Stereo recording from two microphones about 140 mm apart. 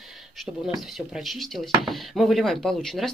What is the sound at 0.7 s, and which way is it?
Speech, centre (ahead or behind).